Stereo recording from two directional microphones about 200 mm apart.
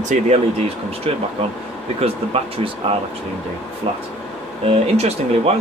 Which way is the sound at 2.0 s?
30° right (ahead or behind).